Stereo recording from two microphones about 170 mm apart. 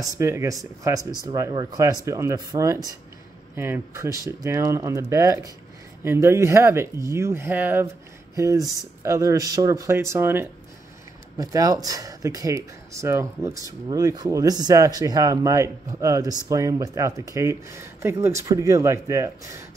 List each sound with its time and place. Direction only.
0.0 s speech: 15° right (ahead or behind)